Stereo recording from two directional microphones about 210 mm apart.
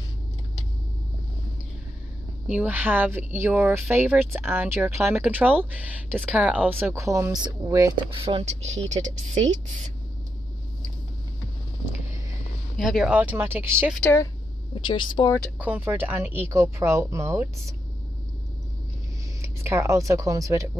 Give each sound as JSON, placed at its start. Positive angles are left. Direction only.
{"t": 2.4, "sound": "speech", "side_deg": -5}
{"t": 8.2, "sound": "a woman's voice", "side_deg": -25}
{"t": 12.7, "sound": "speech", "side_deg": 0}
{"t": 14.1, "sound": "speech", "side_deg": 20}
{"t": 15.6, "sound": "speech", "side_deg": -10}
{"t": 19.4, "sound": "speech", "side_deg": -15}